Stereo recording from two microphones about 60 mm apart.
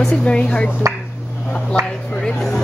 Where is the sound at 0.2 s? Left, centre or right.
Centre.